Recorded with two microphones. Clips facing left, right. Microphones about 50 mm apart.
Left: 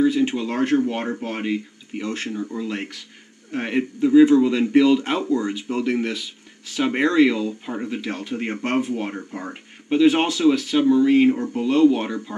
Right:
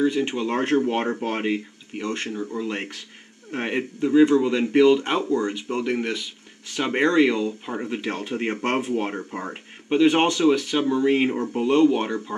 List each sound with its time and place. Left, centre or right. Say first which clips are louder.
0.0 s a sound: left 3 dB; centre
0.4 s speech: left 1 dB; centre
1.2 s speech: right 1 dB; right
2.0 s a man's voice: left 1 dB; centre
4.0 s a man's voice: left 3 dB; centre
7.9 s speech: even; centre
10.0 s a man's voice: left 1 dB; centre
10.9 s speech: left 5 dB; centre
11.7 s a man's voice: left 2 dB; centre